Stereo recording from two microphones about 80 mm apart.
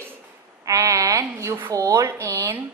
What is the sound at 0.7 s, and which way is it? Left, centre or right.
A woman's voice, right.